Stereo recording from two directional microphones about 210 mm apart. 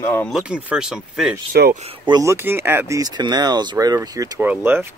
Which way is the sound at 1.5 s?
45° right (ahead or behind).